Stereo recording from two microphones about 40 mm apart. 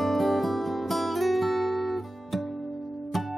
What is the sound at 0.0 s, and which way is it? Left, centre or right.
Music, centre.